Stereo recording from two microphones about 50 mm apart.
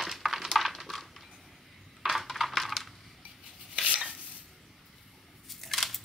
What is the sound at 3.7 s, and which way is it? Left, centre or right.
Stir, centre.